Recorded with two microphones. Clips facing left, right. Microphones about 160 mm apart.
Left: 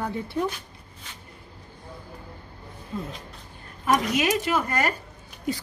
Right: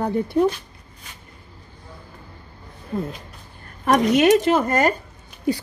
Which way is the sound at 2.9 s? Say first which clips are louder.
Right 7 dB; 60° right (ahead or behind).